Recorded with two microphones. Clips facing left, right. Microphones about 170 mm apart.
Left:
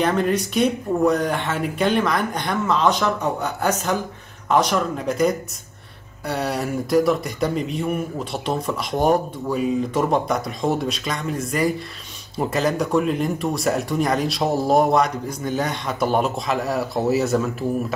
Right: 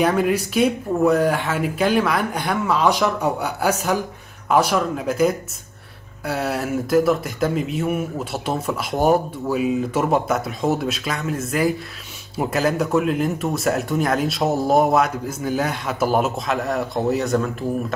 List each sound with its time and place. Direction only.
0.0 s speech: 5° right (ahead or behind)